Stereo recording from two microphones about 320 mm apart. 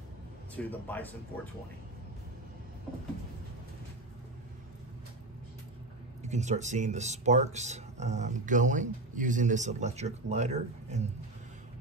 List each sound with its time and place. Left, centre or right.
0.7 s a man's voice: centre
6.2 s speech: right